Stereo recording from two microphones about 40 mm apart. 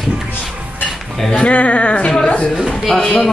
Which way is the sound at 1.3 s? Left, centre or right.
Left.